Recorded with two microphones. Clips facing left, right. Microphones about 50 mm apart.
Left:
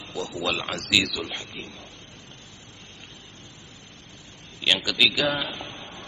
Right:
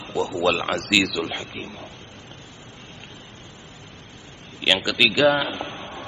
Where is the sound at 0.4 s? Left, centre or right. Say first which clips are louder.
Right 6 dB; centre.